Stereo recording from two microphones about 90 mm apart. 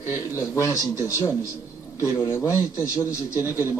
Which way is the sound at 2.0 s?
30° left (ahead or behind).